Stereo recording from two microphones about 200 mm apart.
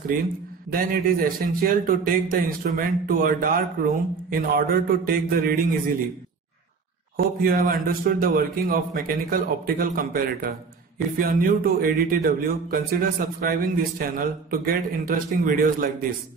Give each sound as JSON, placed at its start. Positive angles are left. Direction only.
{"t": 0.7, "sound": "a man's voice", "side_deg": -45}
{"t": 7.2, "sound": "a man's voice", "side_deg": -45}